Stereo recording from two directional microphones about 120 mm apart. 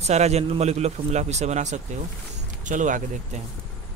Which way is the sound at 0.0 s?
65° right (ahead or behind).